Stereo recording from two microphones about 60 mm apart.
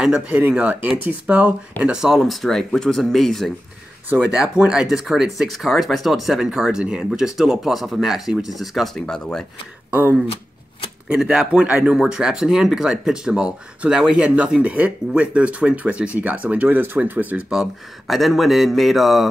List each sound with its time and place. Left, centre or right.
0.3 s speech: right
2.0 s speech: centre
4.3 s a man's voice: centre
8.9 s speech: centre
9.8 s speech: right
11.1 s a man's voice: centre
12.0 s a man's voice: centre; by 17.4 s right
17.5 s speech: centre